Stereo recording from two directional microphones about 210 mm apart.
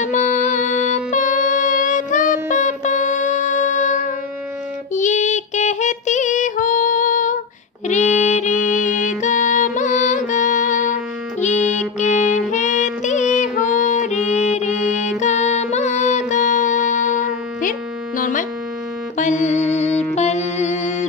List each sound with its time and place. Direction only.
0.0 s music: 35° left (ahead or behind)
4.9 s female singing: 35° left (ahead or behind)
7.9 s music: 35° left (ahead or behind)
17.6 s a sound: 40° left (ahead or behind)
19.1 s music: 35° left (ahead or behind)
19.9 s music: 10° left (ahead or behind)
20.2 s music: 30° left (ahead or behind)